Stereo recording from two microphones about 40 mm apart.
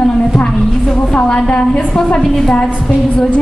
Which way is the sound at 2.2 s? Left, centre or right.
Centre.